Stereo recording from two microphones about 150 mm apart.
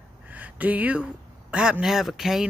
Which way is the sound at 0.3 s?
10° right (ahead or behind).